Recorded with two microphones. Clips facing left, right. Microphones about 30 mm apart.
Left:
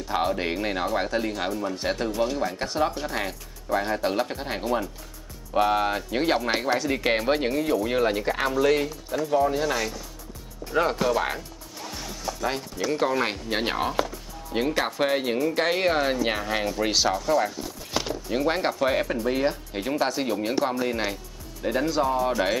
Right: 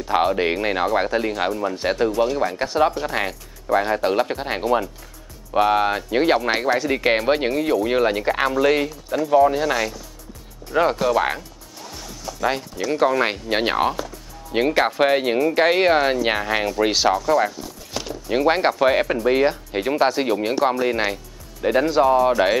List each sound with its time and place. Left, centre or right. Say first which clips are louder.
0.1 s speech: right 6 dB; right; by 11.2 s centre
11.8 s music: left 1 dB; centre
12.4 s speech: right 7 dB; centre
17.5 s a sound: even; centre
18.3 s speech: right 7 dB; right